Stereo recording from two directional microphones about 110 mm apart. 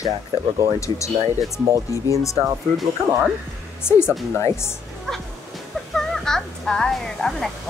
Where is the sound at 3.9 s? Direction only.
25° left (ahead or behind).